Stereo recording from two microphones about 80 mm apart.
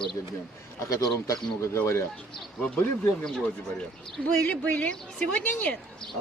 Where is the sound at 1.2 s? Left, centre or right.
Left.